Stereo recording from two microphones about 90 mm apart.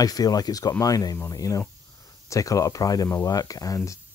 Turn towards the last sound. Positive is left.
turn(degrees=40)  # may be behind; listen again after turning